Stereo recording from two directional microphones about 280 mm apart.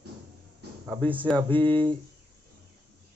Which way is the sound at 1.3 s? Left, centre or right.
Centre.